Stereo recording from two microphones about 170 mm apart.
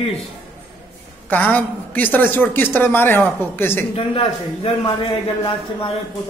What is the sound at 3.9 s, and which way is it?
A man's voice, 30° left (ahead or behind).